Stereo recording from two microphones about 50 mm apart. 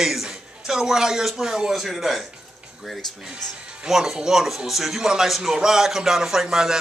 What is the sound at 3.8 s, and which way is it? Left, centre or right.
A man's voice, centre.